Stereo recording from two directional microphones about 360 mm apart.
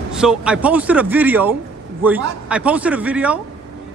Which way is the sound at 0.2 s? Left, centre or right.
Centre.